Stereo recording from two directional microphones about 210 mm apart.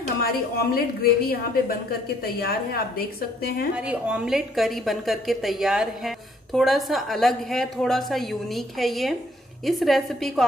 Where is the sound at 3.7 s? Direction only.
5° right (ahead or behind).